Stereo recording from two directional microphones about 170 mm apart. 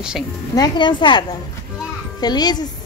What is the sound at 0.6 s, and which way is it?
Speech, 25° left (ahead or behind).